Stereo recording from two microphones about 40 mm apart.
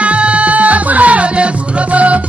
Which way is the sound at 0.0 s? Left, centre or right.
Right.